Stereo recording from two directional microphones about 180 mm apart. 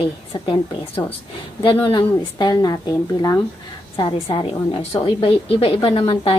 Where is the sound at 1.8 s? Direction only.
25° left (ahead or behind).